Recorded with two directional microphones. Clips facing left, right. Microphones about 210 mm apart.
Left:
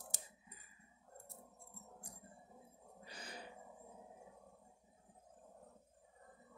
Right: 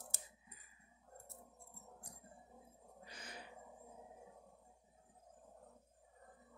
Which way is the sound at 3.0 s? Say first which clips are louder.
Left 2 dB; 35° left (ahead or behind).